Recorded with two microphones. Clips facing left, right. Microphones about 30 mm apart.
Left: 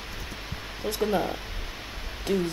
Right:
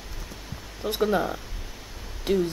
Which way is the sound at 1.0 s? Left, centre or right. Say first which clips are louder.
Right 2 dB; centre.